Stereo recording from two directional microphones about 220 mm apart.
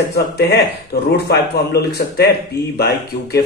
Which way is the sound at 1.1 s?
45° left (ahead or behind).